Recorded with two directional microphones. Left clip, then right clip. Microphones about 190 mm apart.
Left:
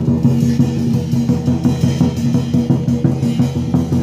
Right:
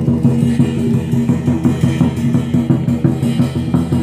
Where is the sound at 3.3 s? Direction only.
5° left (ahead or behind).